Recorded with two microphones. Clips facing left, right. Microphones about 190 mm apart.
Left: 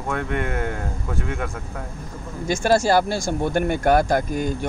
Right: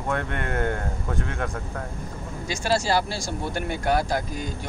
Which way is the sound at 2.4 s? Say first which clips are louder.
Left 6 dB; 50° left (ahead or behind).